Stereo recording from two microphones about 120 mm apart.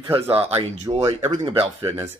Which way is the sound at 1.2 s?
65° right (ahead or behind).